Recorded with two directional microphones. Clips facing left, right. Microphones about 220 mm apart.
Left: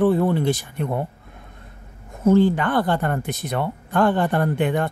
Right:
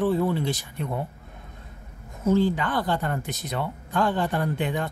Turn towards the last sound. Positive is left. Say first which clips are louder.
# left 6 dB
turn(degrees=55)  # may be behind; listen again after turning